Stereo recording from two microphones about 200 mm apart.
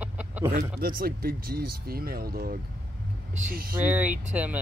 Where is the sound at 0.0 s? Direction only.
5° right (ahead or behind).